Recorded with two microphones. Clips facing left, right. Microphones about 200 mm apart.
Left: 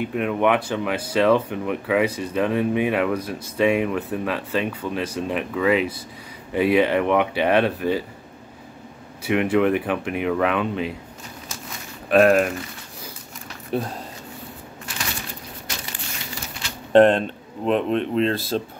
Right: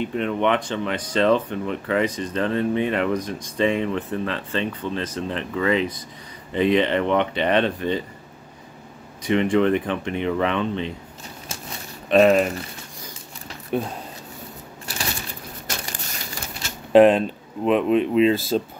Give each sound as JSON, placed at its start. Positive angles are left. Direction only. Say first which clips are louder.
{"t": 0.0, "sound": "speech", "louder": "left 1 dB", "side_deg": 5}
{"t": 9.2, "sound": "speech", "louder": "even", "side_deg": 10}
{"t": 12.1, "sound": "speech", "louder": "even", "side_deg": 0}
{"t": 13.7, "sound": "speech", "louder": "right 1 dB", "side_deg": 0}
{"t": 14.9, "sound": "crushing", "louder": "right 2 dB", "side_deg": -35}
{"t": 15.6, "sound": "crushing", "louder": "right 4 dB", "side_deg": -45}
{"t": 16.9, "sound": "speech", "louder": "right 1 dB", "side_deg": -5}